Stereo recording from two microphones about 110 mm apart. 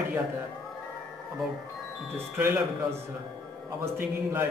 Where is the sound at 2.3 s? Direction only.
15° right (ahead or behind).